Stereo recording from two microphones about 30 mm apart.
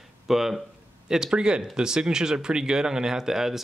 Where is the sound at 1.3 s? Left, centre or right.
Right.